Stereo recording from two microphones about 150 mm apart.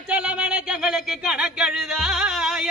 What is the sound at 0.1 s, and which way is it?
Speech, 5° right (ahead or behind).